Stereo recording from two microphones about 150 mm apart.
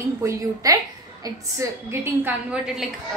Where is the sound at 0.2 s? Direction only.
20° right (ahead or behind).